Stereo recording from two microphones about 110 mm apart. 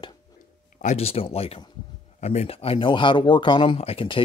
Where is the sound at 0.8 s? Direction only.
70° left (ahead or behind).